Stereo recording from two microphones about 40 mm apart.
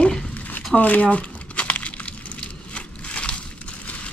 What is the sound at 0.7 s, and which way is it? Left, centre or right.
Crumpling, left.